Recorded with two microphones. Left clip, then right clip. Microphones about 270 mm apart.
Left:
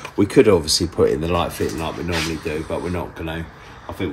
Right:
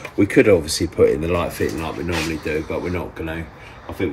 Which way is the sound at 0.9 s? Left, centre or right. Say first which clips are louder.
Right 3 dB; centre.